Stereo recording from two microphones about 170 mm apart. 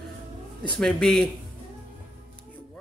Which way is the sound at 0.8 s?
5° left (ahead or behind).